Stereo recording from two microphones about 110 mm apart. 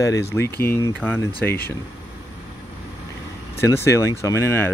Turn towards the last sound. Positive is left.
turn(degrees=25)  # may be behind; listen again after turning